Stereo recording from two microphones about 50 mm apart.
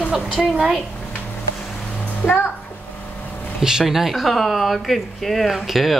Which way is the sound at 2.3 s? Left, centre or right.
Left.